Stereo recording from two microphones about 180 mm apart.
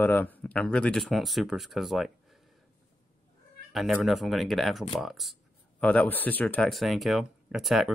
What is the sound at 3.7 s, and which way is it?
Speech, centre (ahead or behind).